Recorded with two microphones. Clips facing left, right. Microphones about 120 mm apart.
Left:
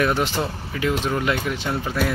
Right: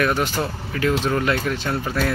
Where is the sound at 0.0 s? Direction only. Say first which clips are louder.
Even; 20° left (ahead or behind).